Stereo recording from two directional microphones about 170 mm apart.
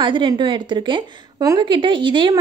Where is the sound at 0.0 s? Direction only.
30° right (ahead or behind).